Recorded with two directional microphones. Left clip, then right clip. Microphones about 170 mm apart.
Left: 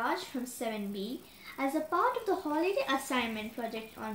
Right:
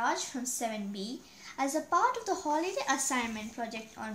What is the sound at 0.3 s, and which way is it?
Speech, 15° right (ahead or behind).